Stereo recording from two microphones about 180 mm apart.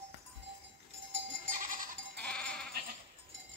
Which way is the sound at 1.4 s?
50° right (ahead or behind).